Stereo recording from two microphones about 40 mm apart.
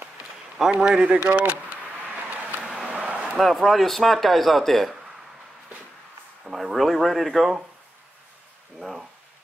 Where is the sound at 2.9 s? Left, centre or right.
Right.